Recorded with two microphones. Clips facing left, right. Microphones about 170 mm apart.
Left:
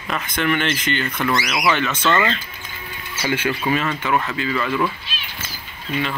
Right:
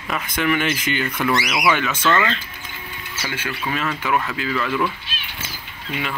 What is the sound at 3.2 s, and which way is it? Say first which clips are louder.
Speech: left 7 dB; 20° left (ahead or behind).